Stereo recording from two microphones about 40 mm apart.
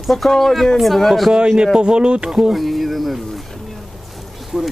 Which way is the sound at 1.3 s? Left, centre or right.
Right.